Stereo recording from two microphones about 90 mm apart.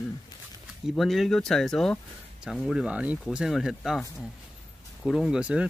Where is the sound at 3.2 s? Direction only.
5° right (ahead or behind).